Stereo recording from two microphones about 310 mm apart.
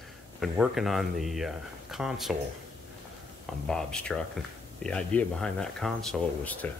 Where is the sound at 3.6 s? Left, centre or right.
Centre.